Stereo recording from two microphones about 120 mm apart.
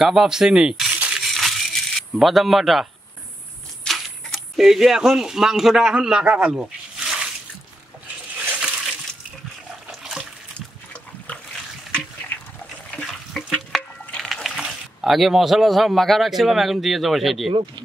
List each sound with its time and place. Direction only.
0.0 s rattle: 5° right (ahead or behind)
3.8 s speech: centre (ahead or behind)
8.4 s a sound: 5° right (ahead or behind)
9.8 s water: centre (ahead or behind)
12.9 s a sound: 5° left (ahead or behind)
17.5 s speech: 45° right (ahead or behind)